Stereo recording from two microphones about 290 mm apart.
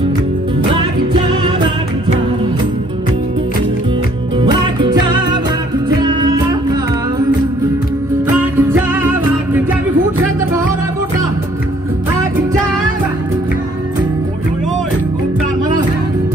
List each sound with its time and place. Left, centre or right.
4.4 s music: centre